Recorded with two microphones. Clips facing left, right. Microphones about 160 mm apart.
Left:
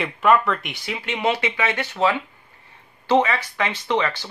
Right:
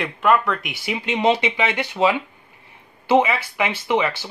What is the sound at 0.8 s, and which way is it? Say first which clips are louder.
Speech: right 4 dB; 20° right (ahead or behind).